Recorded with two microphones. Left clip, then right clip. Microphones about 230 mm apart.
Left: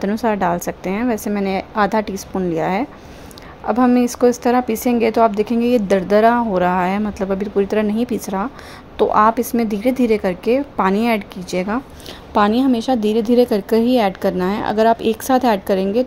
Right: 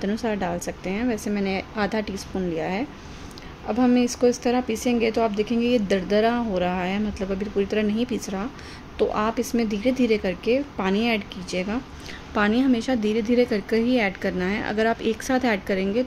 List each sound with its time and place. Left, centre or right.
0.0 s speech: centre